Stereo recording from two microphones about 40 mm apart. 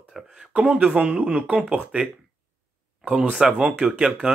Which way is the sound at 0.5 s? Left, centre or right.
Right.